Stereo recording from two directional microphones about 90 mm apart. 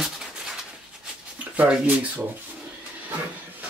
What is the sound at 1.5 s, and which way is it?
Speech, 15° right (ahead or behind).